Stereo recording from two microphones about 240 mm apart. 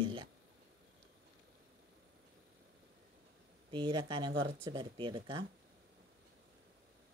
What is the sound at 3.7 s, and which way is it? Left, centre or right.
Speech, centre.